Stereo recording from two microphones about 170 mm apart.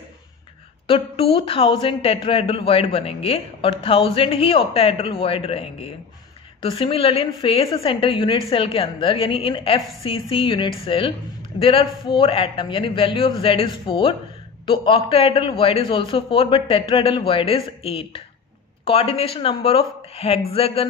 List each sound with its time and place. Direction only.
0.8 s a woman's voice: 35° left (ahead or behind)